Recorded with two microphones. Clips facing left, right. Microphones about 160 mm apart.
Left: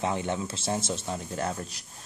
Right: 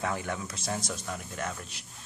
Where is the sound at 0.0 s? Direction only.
25° left (ahead or behind).